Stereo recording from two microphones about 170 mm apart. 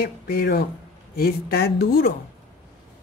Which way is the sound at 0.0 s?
65° left (ahead or behind).